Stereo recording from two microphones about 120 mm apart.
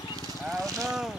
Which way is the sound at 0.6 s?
30° right (ahead or behind).